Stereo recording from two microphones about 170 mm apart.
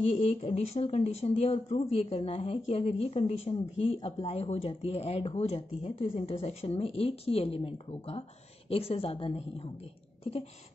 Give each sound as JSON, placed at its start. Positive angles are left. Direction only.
{"t": 0.0, "sound": "speech", "side_deg": 40}